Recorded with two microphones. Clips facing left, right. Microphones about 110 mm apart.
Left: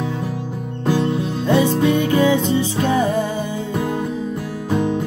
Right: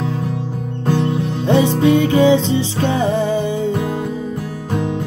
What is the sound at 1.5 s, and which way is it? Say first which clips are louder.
Music: right 3 dB; 20° right (ahead or behind).